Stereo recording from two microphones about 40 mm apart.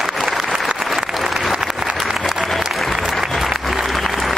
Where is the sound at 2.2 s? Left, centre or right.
Centre.